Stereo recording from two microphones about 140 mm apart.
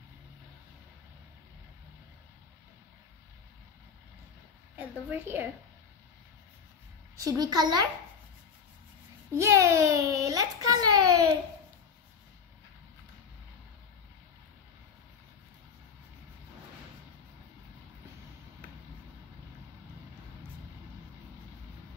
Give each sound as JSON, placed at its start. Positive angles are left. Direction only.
{"t": 4.7, "sound": "a woman's voice", "side_deg": -15}
{"t": 7.2, "sound": "a child's voice", "side_deg": -30}
{"t": 9.4, "sound": "a child's voice", "side_deg": -20}